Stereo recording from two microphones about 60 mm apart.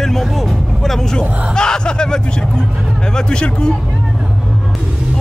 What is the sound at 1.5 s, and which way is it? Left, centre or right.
A man's voice, centre.